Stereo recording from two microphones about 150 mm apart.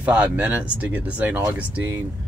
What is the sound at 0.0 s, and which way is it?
Speech, 10° right (ahead or behind).